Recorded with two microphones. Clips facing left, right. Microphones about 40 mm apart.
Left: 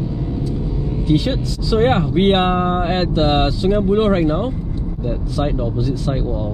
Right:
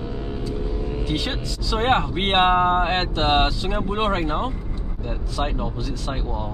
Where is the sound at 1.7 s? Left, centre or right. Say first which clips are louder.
Left 5 dB; right.